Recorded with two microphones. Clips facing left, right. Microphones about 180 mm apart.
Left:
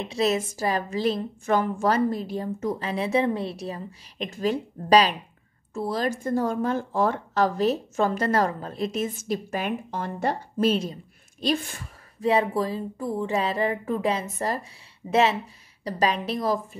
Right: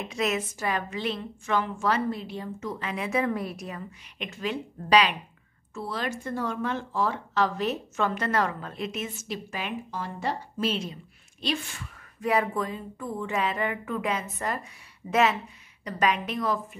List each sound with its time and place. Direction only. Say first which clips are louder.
0.0 s a woman's voice: left 4 dB; 30° left (ahead or behind)